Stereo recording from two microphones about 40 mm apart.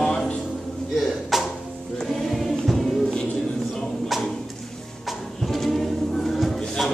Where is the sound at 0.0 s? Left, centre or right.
Centre.